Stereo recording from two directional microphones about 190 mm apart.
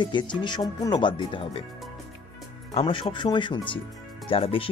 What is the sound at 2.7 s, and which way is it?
Speech, 30° left (ahead or behind).